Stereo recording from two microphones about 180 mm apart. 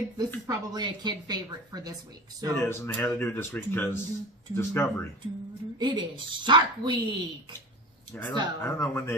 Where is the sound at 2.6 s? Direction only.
15° left (ahead or behind).